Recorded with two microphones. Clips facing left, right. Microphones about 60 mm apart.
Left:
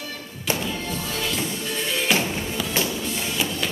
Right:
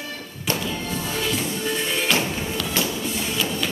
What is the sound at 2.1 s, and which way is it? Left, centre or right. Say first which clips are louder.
Music: even; centre.